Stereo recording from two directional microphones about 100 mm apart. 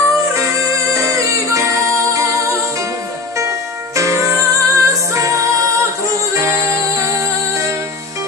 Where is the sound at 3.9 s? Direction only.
30° right (ahead or behind).